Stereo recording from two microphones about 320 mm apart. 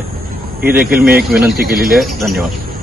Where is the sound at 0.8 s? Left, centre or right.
Right.